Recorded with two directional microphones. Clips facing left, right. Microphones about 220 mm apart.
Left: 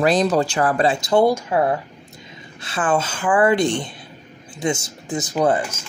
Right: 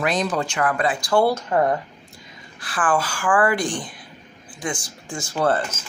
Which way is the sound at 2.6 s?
25° left (ahead or behind).